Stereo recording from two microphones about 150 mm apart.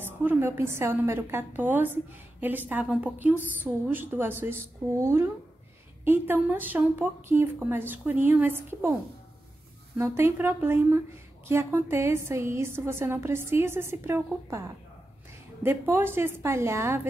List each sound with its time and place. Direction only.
0.0 s a woman's voice: 15° right (ahead or behind)
9.9 s a woman's voice: 15° right (ahead or behind)
15.6 s a woman's voice: 15° right (ahead or behind)